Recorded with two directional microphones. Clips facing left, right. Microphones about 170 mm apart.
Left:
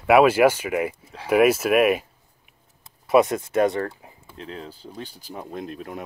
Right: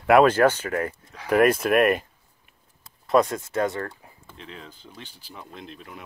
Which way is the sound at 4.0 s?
20° left (ahead or behind).